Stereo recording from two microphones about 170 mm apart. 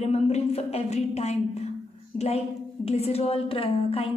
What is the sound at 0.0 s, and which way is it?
A woman's voice, 40° left (ahead or behind).